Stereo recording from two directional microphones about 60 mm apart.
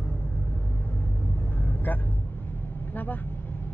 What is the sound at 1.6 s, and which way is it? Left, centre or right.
Vehicle, left.